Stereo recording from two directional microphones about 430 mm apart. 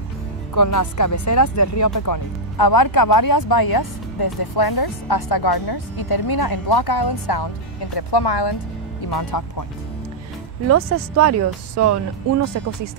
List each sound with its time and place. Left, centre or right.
0.6 s speech: left
9.1 s speech: left
10.7 s speech: right